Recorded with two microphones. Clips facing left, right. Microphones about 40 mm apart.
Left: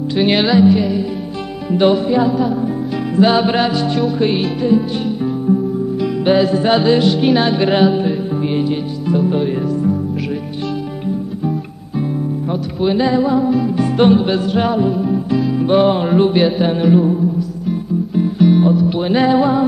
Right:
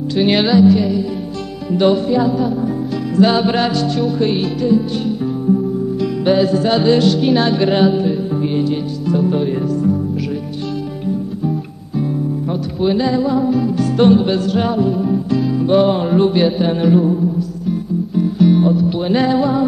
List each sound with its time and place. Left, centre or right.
0.2 s music: centre
0.6 s music: left
5.0 s music: centre
6.5 s music: left
7.7 s music: centre
12.4 s music: centre
13.4 s music: centre
13.7 s music: left
15.5 s music: centre
18.1 s music: centre
18.5 s music: centre